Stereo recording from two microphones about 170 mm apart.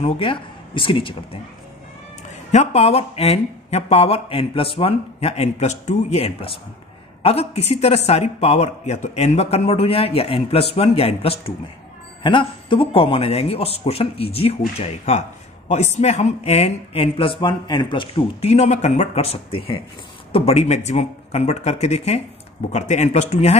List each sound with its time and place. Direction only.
0.0 s speech: 30° left (ahead or behind)
2.5 s speech: 40° left (ahead or behind)